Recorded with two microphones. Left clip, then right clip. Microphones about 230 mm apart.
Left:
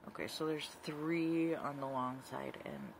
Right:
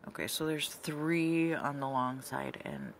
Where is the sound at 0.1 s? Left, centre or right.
Right.